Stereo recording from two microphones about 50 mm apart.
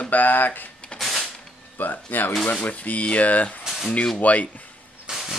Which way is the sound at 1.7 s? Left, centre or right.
Left.